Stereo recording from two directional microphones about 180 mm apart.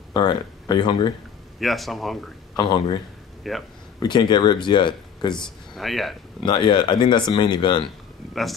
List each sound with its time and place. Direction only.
0.1 s speech: 25° left (ahead or behind)
1.6 s speech: centre (ahead or behind)
2.5 s speech: 25° left (ahead or behind)
3.4 s speech: centre (ahead or behind)
4.0 s speech: 25° left (ahead or behind)
5.4 s speech: centre (ahead or behind)
6.4 s speech: 25° left (ahead or behind)